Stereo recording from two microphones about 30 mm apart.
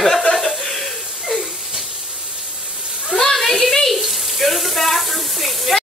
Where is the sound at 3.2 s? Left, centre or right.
Centre.